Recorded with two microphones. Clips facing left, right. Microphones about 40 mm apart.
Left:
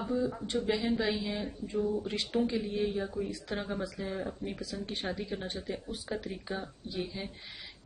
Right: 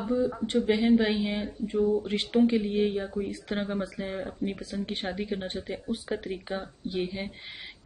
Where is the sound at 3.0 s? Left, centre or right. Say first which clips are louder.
Right 3 dB; centre.